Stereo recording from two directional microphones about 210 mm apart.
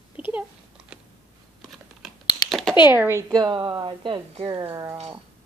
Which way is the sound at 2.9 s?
10° right (ahead or behind).